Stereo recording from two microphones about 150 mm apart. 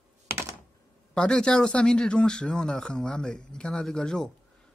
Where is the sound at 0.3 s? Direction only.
15° right (ahead or behind).